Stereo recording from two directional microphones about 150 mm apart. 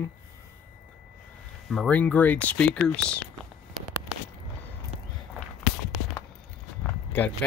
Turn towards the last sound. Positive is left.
turn(degrees=10)  # may be behind; listen again after turning